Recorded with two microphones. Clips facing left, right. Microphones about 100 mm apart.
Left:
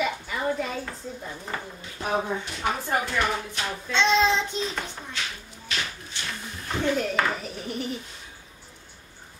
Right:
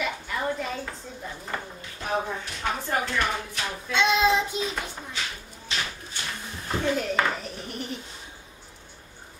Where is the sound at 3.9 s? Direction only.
10° right (ahead or behind).